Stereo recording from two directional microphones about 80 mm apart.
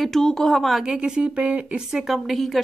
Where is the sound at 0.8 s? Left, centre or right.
Centre.